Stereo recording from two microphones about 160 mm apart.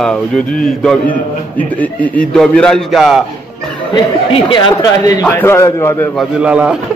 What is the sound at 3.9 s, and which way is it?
A man's voice, 30° left (ahead or behind).